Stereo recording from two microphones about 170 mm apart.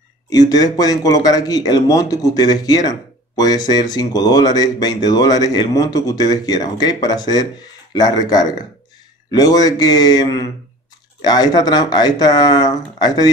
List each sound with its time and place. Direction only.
0.3 s speech: 20° left (ahead or behind)